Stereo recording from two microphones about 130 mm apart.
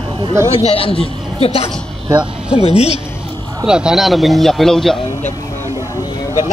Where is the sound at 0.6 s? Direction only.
45° left (ahead or behind).